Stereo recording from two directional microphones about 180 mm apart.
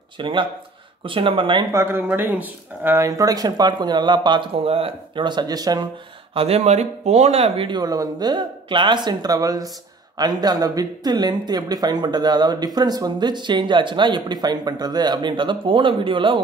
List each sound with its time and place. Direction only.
0.2 s speech: 25° right (ahead or behind)
1.7 s speech: 15° right (ahead or behind)
6.3 s speech: 35° right (ahead or behind)